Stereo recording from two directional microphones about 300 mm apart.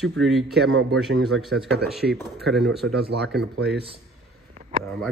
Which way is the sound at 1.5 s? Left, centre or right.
Right.